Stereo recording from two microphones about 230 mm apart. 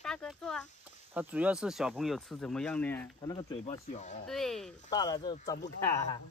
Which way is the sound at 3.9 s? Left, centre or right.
Left.